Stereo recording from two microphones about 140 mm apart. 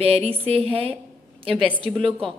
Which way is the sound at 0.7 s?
40° right (ahead or behind).